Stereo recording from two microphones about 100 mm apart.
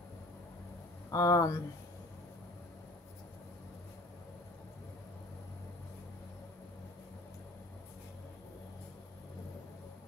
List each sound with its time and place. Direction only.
1.1 s speech: 35° left (ahead or behind)